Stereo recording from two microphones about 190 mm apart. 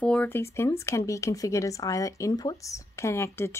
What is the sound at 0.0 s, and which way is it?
Speech, 5° left (ahead or behind).